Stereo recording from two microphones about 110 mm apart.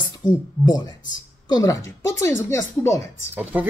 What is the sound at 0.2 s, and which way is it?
Speech, 35° left (ahead or behind).